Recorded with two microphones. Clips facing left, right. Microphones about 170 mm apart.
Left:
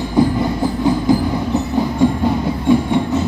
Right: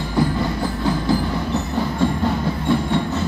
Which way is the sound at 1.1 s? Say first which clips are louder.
Left 5 dB; 20° left (ahead or behind).